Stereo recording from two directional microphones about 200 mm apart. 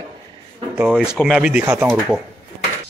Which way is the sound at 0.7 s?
5° right (ahead or behind).